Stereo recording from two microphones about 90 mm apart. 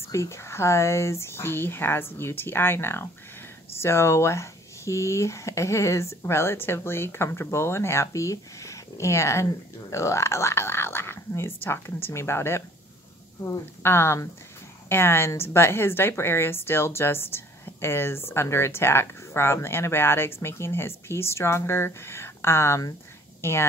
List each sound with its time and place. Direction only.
0.1 s a woman's voice: 35° left (ahead or behind)